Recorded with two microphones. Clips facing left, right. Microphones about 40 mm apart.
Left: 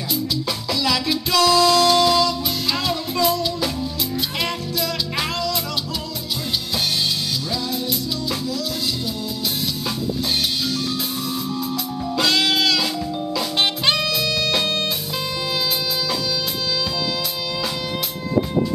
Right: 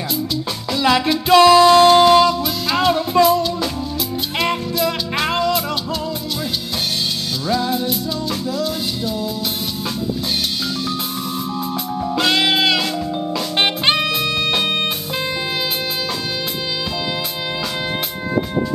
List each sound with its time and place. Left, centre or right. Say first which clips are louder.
0.7 s music: right 7 dB; right
7.5 s music: right 9 dB; right
12.2 s music: right 2 dB; right